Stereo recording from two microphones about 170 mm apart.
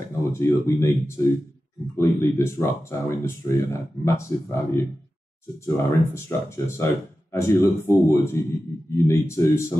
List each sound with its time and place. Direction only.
0.2 s speech: 15° left (ahead or behind)
5.8 s speech: 15° left (ahead or behind)